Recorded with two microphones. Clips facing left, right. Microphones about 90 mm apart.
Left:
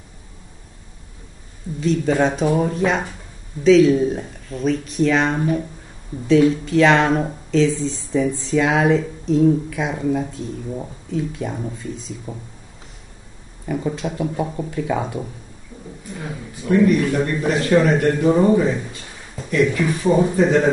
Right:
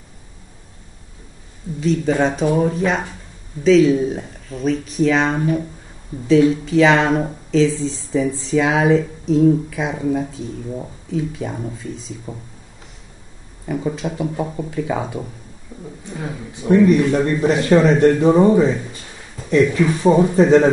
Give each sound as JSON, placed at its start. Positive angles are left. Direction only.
{"t": 1.8, "sound": "speech", "side_deg": 0}
{"t": 13.7, "sound": "speech", "side_deg": 0}
{"t": 16.2, "sound": "speech", "side_deg": -25}